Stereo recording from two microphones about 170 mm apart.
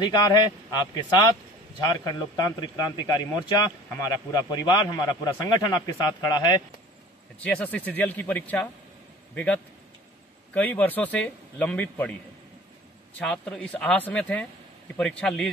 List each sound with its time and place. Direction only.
0.0 s a man's voice: 25° left (ahead or behind)
7.3 s a man's voice: 10° left (ahead or behind)
13.2 s speech: 5° left (ahead or behind)